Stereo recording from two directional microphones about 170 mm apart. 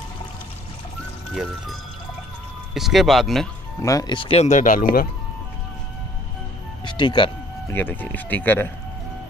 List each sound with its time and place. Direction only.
2.7 s speech: centre (ahead or behind)
3.8 s speech: 25° left (ahead or behind); by 5.0 s 50° left (ahead or behind)
6.8 s speech: 30° left (ahead or behind)
7.6 s speech: 10° left (ahead or behind)